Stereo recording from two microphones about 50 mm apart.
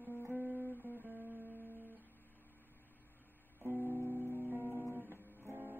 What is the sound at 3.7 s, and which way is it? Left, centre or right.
Music, right.